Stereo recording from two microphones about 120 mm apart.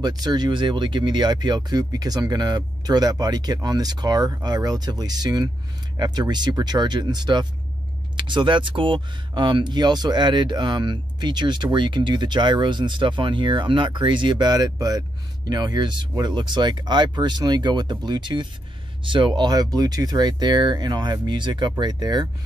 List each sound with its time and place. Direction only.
0.0 s speech: 35° right (ahead or behind)